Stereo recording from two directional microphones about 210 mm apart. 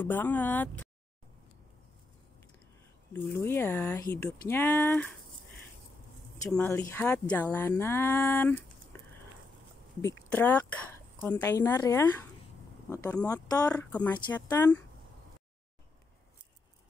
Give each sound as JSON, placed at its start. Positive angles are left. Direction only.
{"t": 0.0, "sound": "speech", "side_deg": 10}
{"t": 3.1, "sound": "speech", "side_deg": 10}
{"t": 6.5, "sound": "speech", "side_deg": 10}
{"t": 10.0, "sound": "speech", "side_deg": 10}